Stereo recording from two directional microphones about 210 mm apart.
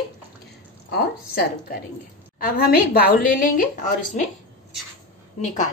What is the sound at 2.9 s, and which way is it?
Speech, 45° left (ahead or behind).